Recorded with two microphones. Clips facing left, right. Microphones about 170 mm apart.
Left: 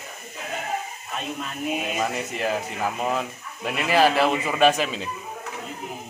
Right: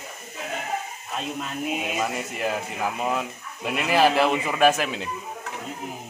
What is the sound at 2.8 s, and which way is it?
Speech, 5° right (ahead or behind).